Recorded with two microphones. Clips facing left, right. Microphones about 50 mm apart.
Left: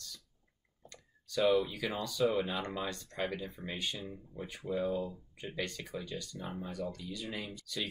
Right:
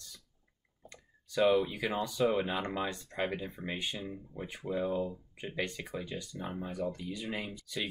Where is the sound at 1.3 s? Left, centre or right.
Centre.